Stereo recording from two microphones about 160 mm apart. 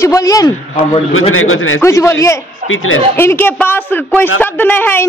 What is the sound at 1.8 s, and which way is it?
A woman's voice, 20° left (ahead or behind).